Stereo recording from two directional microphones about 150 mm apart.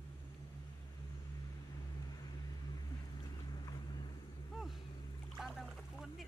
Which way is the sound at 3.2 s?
30° left (ahead or behind).